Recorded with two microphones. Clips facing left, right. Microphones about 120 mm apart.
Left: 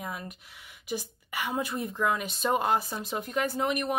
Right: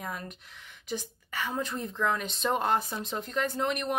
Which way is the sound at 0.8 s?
10° left (ahead or behind).